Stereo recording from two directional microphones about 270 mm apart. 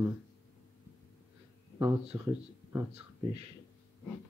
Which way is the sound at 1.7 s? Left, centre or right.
Centre.